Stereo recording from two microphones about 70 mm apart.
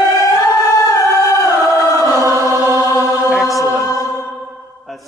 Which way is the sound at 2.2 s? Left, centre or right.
Right.